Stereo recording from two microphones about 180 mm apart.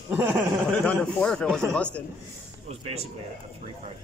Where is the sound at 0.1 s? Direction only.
10° right (ahead or behind).